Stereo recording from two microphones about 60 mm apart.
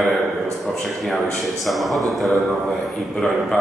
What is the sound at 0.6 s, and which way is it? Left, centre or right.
A man's voice, centre.